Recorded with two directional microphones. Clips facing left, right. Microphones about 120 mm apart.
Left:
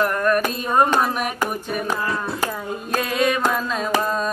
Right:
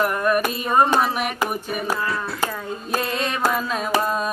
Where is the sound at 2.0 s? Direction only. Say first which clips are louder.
Left 1 dB; 20° left (ahead or behind).